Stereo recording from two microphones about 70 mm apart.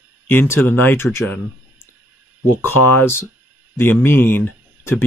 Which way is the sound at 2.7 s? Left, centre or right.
Left.